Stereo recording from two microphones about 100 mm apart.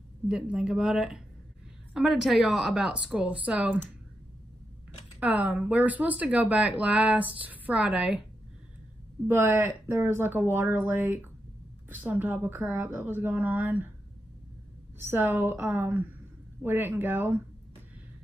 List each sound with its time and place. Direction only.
0.3 s speech: 10° right (ahead or behind)
5.2 s speech: 15° right (ahead or behind)
9.3 s a woman's voice: 20° right (ahead or behind)
15.0 s a woman's voice: 20° right (ahead or behind)